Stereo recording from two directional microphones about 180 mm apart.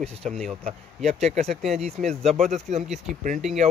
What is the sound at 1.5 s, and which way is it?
Speech, centre (ahead or behind).